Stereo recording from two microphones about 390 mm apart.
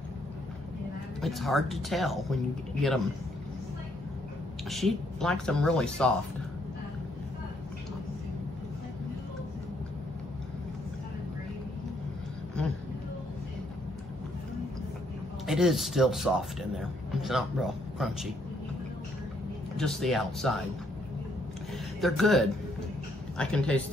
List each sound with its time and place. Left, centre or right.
1.2 s speech: centre
4.6 s speech: centre
15.4 s speech: centre
19.8 s speech: centre
22.0 s speech: centre